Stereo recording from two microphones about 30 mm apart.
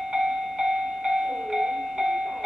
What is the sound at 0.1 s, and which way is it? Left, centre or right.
Train, right.